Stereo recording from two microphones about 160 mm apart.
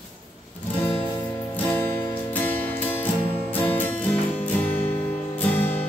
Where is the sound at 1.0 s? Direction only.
25° left (ahead or behind).